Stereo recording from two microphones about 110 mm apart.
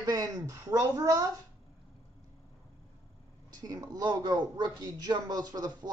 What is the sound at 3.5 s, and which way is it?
A man's voice, 35° right (ahead or behind).